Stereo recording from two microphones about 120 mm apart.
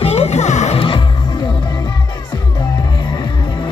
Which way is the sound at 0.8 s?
45° left (ahead or behind).